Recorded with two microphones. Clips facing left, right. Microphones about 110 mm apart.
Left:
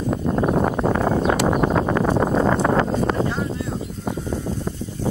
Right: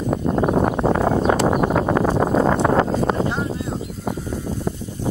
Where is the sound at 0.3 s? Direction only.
25° right (ahead or behind).